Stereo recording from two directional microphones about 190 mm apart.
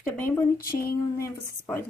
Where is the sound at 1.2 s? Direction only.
10° left (ahead or behind).